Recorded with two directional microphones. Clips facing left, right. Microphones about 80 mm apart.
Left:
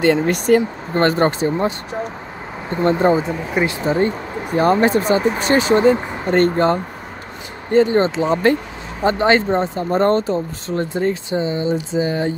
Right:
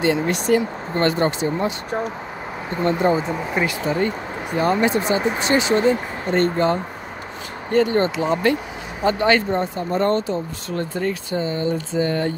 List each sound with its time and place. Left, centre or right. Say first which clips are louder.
0.0 s speech: left 4 dB; left
0.9 s speech: left 4 dB; left
2.8 s speech: left 4 dB; left
4.6 s speech: left 4 dB; left
7.7 s speech: left 4 dB; left